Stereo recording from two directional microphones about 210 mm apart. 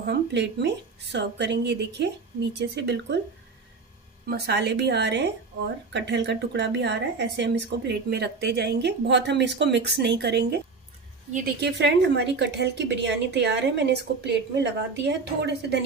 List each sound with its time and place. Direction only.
0.0 s a woman's voice: 55° right (ahead or behind)
4.3 s a woman's voice: 50° right (ahead or behind)